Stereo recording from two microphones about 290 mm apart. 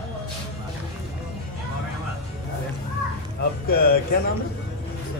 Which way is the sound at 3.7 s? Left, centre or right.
Left.